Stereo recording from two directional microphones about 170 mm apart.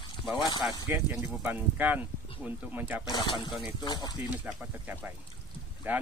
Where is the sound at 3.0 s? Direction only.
25° left (ahead or behind).